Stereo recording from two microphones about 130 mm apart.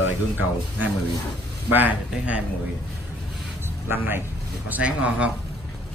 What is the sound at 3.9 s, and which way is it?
Speech, 15° right (ahead or behind).